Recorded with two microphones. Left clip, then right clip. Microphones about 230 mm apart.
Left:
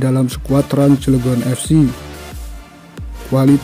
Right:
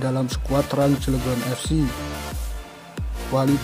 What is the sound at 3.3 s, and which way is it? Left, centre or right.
Speech, left.